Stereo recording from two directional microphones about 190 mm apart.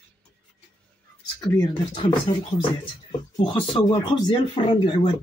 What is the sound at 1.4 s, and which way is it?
Speech, 25° left (ahead or behind).